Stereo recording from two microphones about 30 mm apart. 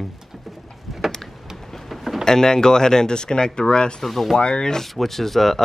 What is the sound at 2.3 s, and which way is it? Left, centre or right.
Speech, left.